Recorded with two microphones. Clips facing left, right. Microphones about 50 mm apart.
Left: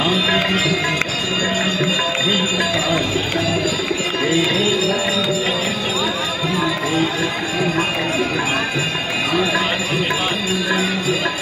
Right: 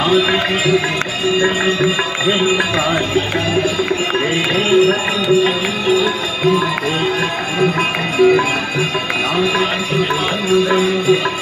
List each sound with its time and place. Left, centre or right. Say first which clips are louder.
0.1 s music: right 3 dB; centre
4.6 s music: right 6 dB; right